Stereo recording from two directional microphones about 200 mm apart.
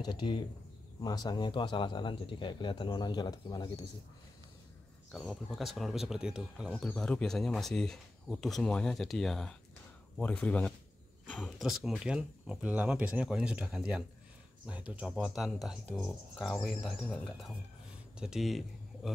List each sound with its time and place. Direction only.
0.0 s speech: 20° left (ahead or behind)
5.1 s speech: centre (ahead or behind)